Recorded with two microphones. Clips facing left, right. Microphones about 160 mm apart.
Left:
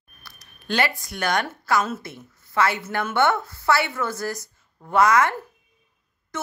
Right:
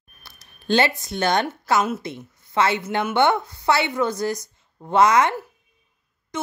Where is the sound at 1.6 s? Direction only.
20° right (ahead or behind).